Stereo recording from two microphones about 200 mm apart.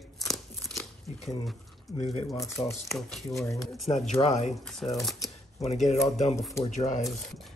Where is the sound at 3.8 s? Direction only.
35° left (ahead or behind).